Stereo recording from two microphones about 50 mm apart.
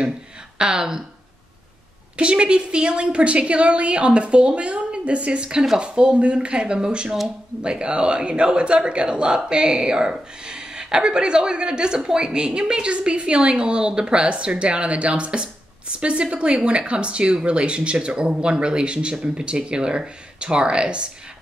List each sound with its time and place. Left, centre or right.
0.6 s speech: centre
2.1 s speech: right